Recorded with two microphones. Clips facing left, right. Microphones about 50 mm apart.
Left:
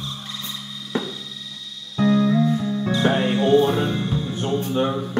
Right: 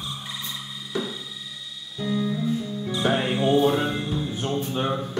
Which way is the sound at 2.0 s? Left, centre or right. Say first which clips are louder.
Left 8 dB; left.